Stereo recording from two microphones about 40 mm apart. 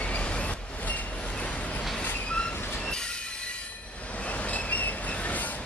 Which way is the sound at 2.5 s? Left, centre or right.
Left.